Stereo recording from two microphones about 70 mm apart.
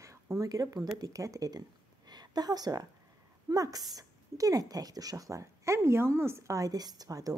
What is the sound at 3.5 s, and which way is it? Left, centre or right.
A woman's voice, right.